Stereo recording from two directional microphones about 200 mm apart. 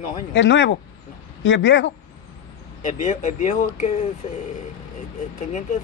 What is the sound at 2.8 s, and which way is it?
A man's voice, 35° left (ahead or behind).